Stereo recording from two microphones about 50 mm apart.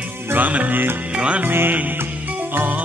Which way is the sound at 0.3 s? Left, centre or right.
Right.